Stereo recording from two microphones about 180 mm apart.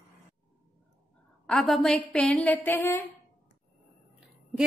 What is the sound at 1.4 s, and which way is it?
A woman's voice, centre (ahead or behind).